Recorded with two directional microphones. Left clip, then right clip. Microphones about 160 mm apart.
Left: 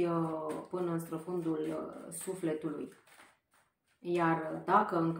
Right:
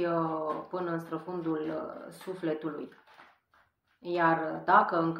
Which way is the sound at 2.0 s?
20° left (ahead or behind).